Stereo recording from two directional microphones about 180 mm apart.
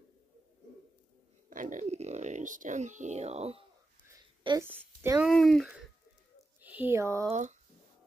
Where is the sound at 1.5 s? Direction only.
45° right (ahead or behind).